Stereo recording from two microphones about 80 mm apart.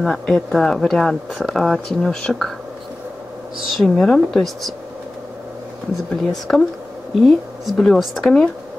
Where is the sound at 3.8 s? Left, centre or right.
Centre.